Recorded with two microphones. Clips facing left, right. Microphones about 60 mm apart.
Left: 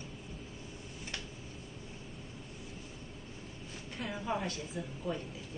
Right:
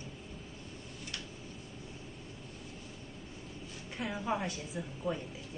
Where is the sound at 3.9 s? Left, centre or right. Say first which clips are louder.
Right 1 dB; centre.